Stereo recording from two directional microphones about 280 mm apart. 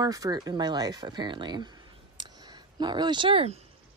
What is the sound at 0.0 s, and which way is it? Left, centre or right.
Speech, centre.